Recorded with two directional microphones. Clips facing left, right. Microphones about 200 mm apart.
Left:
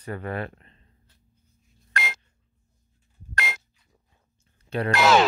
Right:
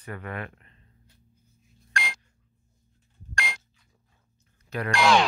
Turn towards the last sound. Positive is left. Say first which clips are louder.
# left 2 dB
turn(degrees=5)  # may be behind; listen again after turning